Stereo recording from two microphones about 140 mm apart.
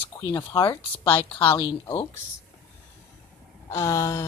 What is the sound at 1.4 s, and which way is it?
Speech, 35° left (ahead or behind).